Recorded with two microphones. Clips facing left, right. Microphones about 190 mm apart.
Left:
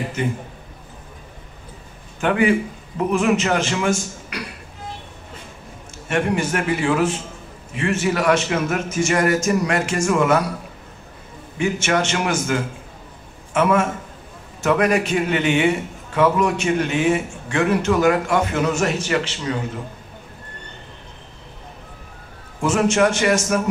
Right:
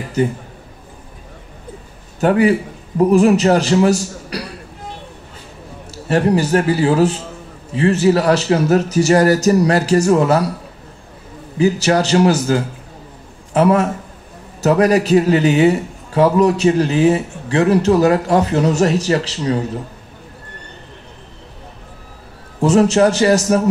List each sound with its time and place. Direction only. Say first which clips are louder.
0.2 s a man's voice: right 8 dB; 35° right (ahead or behind)
2.1 s a man's voice: right 4 dB; 40° right (ahead or behind)
6.0 s a man's voice: right 6 dB; 35° right (ahead or behind)
11.5 s a man's voice: right 6 dB; 35° right (ahead or behind)
22.6 s a man's voice: right 5 dB; 35° right (ahead or behind)